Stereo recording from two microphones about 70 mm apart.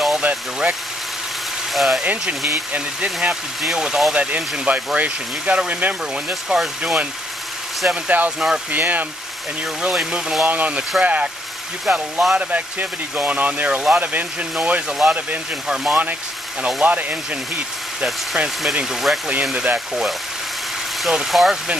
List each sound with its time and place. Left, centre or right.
0.2 s speech: centre
1.7 s speech: centre
2.7 s speech: centre
6.5 s speech: centre
7.9 s speech: right
9.8 s speech: centre
10.4 s speech: right
11.9 s speech: centre
12.4 s speech: right
15.7 s speech: centre
16.8 s speech: right
18.8 s speech: centre
19.5 s speech: centre
21.1 s speech: centre